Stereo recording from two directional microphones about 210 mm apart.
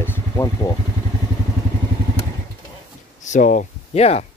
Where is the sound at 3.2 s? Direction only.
35° left (ahead or behind).